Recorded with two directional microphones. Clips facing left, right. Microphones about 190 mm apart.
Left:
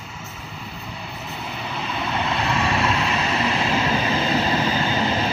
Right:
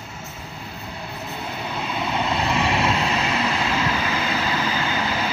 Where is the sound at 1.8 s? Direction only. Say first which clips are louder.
Right 1 dB; 10° right (ahead or behind).